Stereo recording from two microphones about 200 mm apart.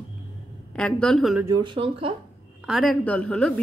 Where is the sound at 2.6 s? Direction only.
Centre (ahead or behind).